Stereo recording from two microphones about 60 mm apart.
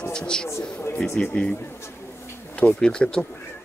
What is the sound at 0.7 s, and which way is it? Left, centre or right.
Speech, left.